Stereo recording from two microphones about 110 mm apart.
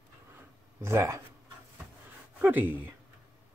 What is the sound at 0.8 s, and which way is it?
Speech, 25° right (ahead or behind).